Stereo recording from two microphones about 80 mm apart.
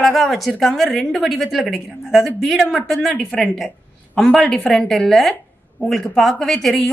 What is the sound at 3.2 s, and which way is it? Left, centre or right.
A woman's voice, centre.